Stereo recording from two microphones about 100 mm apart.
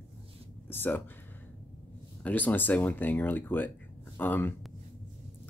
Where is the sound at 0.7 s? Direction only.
20° left (ahead or behind).